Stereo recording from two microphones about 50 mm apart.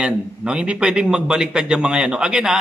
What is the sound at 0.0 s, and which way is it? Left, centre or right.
A man's voice, centre.